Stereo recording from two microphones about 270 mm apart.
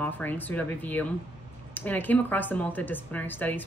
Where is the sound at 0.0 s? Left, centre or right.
Centre.